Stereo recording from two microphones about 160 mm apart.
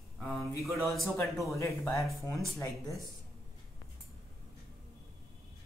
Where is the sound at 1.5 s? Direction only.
20° left (ahead or behind).